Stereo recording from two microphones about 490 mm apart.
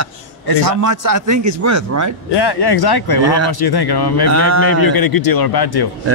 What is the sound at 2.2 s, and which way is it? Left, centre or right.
Speech, left.